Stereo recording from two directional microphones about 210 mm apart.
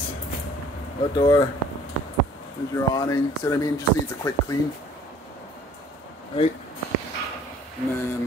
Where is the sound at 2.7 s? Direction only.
15° left (ahead or behind).